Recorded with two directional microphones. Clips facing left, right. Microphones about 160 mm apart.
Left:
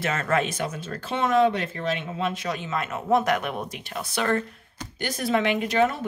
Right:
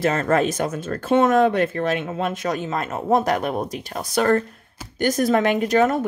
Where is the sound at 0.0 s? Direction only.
40° right (ahead or behind).